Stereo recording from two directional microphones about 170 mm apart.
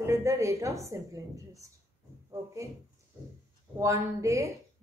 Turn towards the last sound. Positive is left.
turn(degrees=-20)  # may be behind; listen again after turning